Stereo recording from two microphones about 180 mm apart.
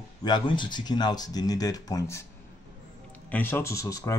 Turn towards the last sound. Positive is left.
turn(degrees=20)  # may be behind; listen again after turning